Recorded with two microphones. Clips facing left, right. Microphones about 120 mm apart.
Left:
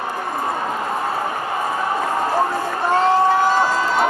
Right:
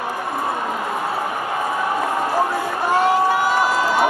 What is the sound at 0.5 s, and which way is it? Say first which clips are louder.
Crowd: left 1 dB; 5° right (ahead or behind).